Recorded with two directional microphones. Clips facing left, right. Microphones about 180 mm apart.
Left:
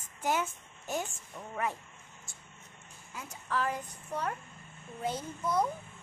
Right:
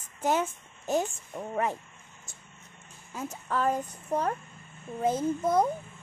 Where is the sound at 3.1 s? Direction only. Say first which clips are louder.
Right 4 dB; 40° right (ahead or behind).